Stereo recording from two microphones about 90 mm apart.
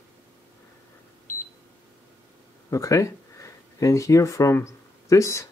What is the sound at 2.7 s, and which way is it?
Speech, 35° left (ahead or behind).